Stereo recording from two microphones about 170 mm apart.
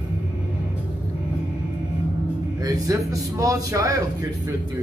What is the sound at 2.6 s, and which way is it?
A man's voice, 20° right (ahead or behind).